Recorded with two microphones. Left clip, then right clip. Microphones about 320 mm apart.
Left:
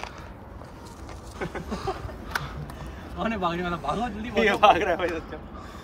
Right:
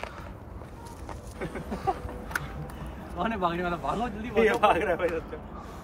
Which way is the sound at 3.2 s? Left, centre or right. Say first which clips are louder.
Left 1 dB; centre.